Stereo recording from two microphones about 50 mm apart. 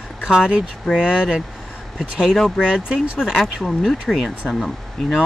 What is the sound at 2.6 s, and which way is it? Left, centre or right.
Speech, centre.